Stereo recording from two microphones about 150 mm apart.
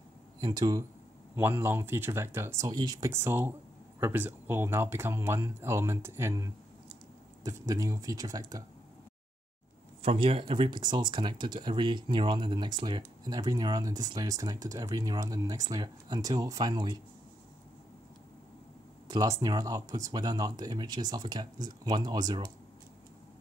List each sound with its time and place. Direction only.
0.4 s speech: 25° right (ahead or behind)
1.3 s speech: 15° right (ahead or behind)
10.0 s speech: 35° right (ahead or behind)
19.0 s speech: 25° right (ahead or behind)